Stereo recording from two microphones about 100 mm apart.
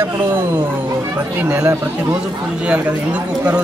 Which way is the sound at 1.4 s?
20° right (ahead or behind).